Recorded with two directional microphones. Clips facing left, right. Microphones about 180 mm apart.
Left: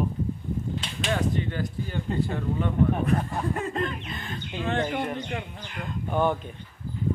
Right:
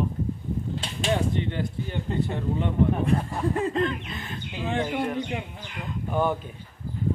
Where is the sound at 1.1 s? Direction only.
25° right (ahead or behind).